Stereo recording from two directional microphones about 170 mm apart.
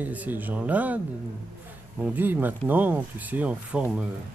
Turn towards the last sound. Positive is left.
turn(degrees=-5)  # may be behind; listen again after turning